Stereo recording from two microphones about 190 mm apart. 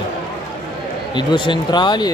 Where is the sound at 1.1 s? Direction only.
25° left (ahead or behind).